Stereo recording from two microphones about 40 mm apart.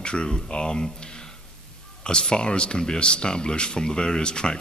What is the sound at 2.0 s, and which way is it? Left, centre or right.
Speech, left.